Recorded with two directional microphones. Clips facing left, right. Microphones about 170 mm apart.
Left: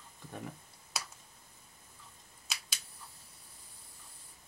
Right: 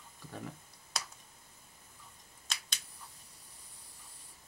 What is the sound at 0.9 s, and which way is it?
Finger snapping, 5° left (ahead or behind).